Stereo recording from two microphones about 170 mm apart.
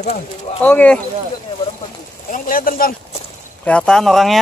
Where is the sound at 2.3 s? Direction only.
55° left (ahead or behind).